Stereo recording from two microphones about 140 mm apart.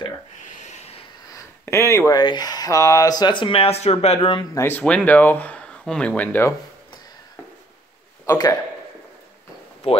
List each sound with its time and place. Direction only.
0.5 s a sound: 55° left (ahead or behind)
1.3 s speech: 20° left (ahead or behind); by 4.5 s 35° left (ahead or behind)
4.6 s speech: 15° left (ahead or behind)
8.3 s speech: 25° left (ahead or behind)
9.8 s speech: 45° left (ahead or behind)